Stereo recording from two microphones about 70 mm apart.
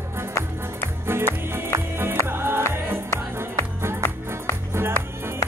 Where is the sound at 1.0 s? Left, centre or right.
Right.